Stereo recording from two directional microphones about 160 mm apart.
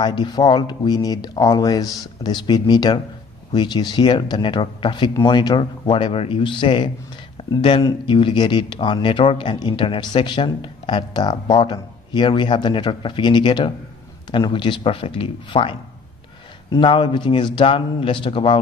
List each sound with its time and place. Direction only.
0.0 s speech: 30° left (ahead or behind)
7.4 s a sound: 30° left (ahead or behind)
7.8 s speech: 30° left (ahead or behind)
16.7 s speech: 30° left (ahead or behind)